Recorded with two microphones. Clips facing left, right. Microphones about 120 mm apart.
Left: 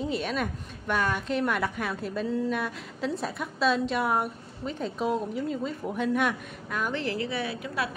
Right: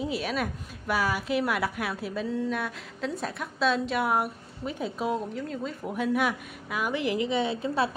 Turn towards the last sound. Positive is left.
turn(degrees=-30)  # may be behind; listen again after turning